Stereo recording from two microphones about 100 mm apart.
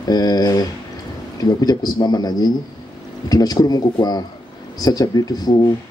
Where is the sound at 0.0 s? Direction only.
40° left (ahead or behind).